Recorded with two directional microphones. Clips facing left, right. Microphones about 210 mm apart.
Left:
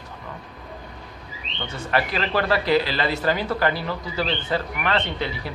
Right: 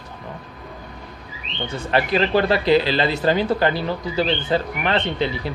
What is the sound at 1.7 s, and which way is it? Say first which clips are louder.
Speech: right 4 dB; 20° right (ahead or behind).